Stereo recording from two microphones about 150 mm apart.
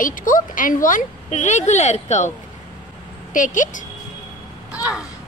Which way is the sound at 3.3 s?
60° left (ahead or behind).